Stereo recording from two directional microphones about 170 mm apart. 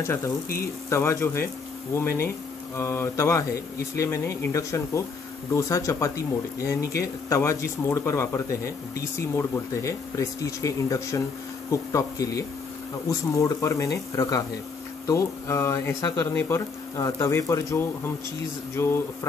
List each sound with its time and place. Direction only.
0.0 s speech: 15° left (ahead or behind)